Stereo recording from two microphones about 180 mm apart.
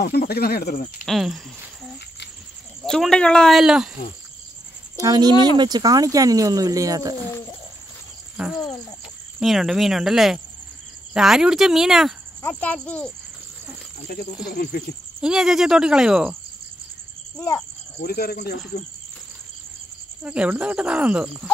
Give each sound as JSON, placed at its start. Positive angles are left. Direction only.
{"t": 0.0, "sound": "speech", "side_deg": 60}
{"t": 1.0, "sound": "speech", "side_deg": 0}
{"t": 2.8, "sound": "speech", "side_deg": 0}
{"t": 4.9, "sound": "speech", "side_deg": -20}
{"t": 8.4, "sound": "speech", "side_deg": -5}
{"t": 12.4, "sound": "a child's voice", "side_deg": 10}
{"t": 14.5, "sound": "speech", "side_deg": 60}
{"t": 15.1, "sound": "speech", "side_deg": -5}
{"t": 17.4, "sound": "a child's voice", "side_deg": 15}
{"t": 18.0, "sound": "speech", "side_deg": 60}
{"t": 20.2, "sound": "speech", "side_deg": -5}